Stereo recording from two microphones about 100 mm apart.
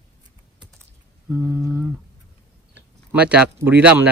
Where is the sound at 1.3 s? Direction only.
20° right (ahead or behind).